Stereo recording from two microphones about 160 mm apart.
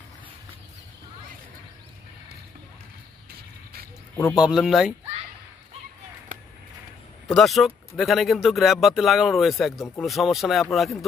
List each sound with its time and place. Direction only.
4.3 s speech: 5° right (ahead or behind)
6.3 s a sound: 55° right (ahead or behind)
7.2 s speech: centre (ahead or behind)